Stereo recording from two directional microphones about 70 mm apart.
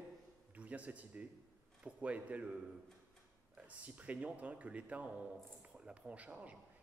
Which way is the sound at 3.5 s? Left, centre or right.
Right.